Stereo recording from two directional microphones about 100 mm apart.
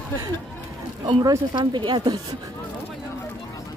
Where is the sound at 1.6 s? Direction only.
50° right (ahead or behind).